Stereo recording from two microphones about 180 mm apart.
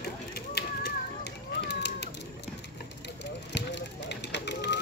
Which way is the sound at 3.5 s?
70° left (ahead or behind).